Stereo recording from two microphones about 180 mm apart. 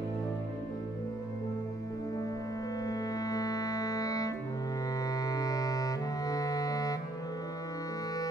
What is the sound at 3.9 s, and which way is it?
Organ, 20° left (ahead or behind).